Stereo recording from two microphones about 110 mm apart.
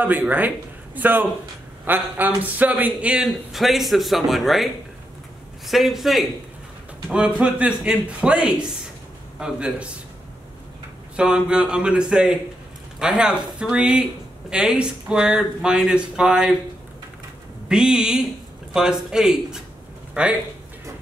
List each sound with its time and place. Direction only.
0.0 s speech: 15° right (ahead or behind)
5.7 s speech: centre (ahead or behind)
11.1 s speech: 10° right (ahead or behind)
17.6 s speech: 5° right (ahead or behind)